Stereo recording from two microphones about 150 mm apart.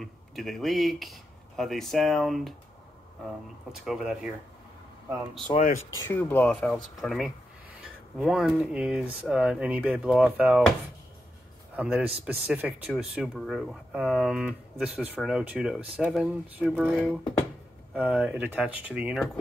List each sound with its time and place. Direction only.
0.0 s speech: centre (ahead or behind)
3.7 s speech: 5° right (ahead or behind)
5.5 s speech: 55° left (ahead or behind)
5.9 s speech: 15° left (ahead or behind)
6.7 s speech: centre (ahead or behind)
11.7 s speech: 10° right (ahead or behind)